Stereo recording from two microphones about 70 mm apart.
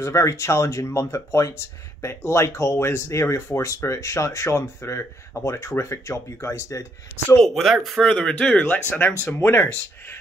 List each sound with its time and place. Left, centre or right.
0.0 s speech: left
7.3 s speech: centre; by 9.1 s left
9.4 s speech: left